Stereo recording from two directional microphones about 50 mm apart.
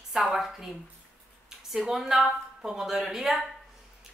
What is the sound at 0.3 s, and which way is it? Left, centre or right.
A woman's voice, centre.